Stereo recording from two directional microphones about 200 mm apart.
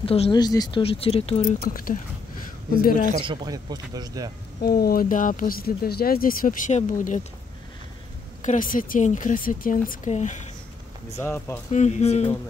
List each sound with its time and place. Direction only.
0.0 s speech: 30° left (ahead or behind)
1.6 s speech: 45° left (ahead or behind)
3.2 s speech: 20° right (ahead or behind)
4.6 s speech: 50° left (ahead or behind)
8.5 s speech: 40° left (ahead or behind)
11.1 s speech: 15° left (ahead or behind)
11.7 s speech: 35° left (ahead or behind)